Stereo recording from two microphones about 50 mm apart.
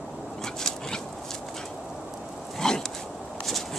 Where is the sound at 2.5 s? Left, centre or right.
Centre.